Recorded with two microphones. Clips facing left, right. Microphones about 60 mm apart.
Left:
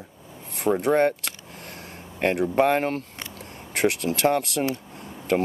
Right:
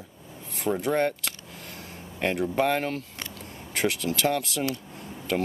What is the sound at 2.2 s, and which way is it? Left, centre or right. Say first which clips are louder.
Speech: left 4 dB; left.